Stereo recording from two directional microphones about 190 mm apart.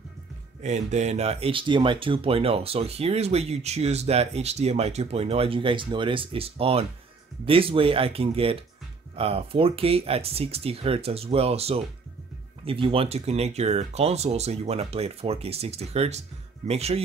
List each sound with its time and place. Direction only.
0.6 s speech: 40° right (ahead or behind)